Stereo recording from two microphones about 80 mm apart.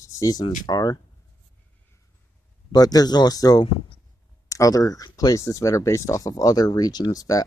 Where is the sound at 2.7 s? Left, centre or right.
Left.